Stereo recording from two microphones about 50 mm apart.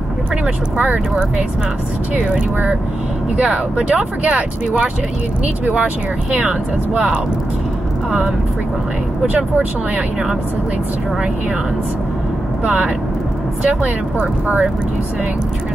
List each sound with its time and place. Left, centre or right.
2.1 s speech: right
6.4 s speech: right
12.6 s speech: right